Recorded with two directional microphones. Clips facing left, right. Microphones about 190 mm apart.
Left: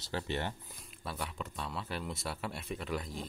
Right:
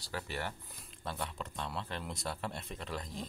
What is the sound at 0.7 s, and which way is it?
Speech, centre (ahead or behind).